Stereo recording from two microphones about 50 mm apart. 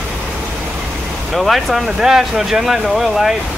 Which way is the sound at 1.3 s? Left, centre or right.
Centre.